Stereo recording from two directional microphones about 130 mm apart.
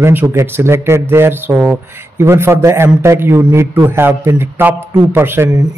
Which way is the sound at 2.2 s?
20° right (ahead or behind).